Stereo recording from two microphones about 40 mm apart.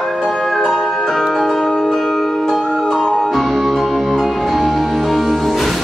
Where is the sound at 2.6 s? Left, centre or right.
Centre.